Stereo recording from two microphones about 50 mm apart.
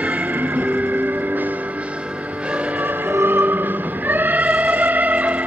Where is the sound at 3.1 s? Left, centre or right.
Right.